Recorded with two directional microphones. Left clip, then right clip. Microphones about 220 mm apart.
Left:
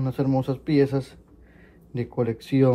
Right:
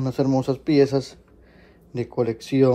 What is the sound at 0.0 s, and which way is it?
A man's voice, 15° right (ahead or behind).